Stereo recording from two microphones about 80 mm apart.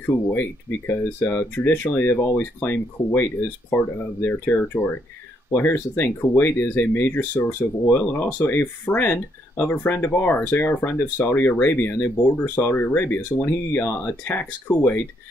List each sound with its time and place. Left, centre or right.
0.0 s speech: left